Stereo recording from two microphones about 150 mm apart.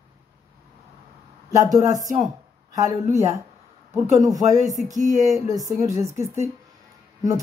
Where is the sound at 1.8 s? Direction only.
55° right (ahead or behind).